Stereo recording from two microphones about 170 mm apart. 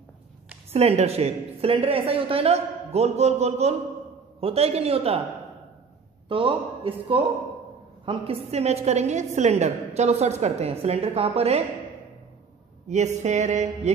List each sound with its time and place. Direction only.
0.7 s a woman's voice: 40° right (ahead or behind)
6.2 s a woman's voice: 30° right (ahead or behind)
12.8 s a sound: 40° right (ahead or behind)